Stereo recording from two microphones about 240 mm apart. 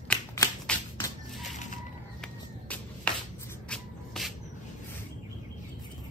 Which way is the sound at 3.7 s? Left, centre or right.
Centre.